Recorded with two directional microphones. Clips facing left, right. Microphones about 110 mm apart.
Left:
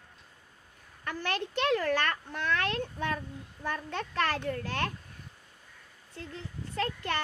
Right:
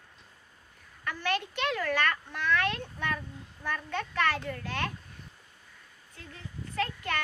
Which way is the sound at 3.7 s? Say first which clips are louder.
Right 1 dB; 35° left (ahead or behind).